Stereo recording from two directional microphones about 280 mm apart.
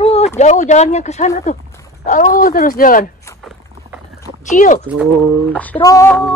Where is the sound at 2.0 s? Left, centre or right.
Left.